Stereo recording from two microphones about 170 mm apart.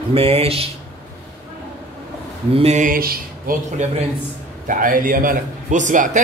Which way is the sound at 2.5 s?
35° right (ahead or behind).